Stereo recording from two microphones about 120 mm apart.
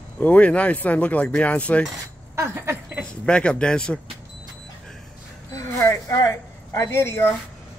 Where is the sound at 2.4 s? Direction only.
20° right (ahead or behind).